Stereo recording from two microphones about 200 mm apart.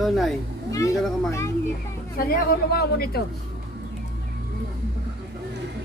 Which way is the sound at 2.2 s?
55° left (ahead or behind).